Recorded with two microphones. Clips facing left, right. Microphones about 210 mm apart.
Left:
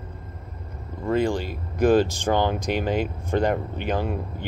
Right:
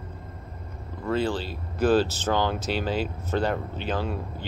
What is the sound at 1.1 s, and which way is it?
Speech, 15° left (ahead or behind).